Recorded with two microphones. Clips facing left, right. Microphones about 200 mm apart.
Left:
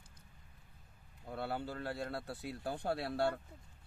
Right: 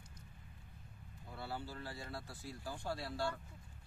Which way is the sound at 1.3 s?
60° left (ahead or behind).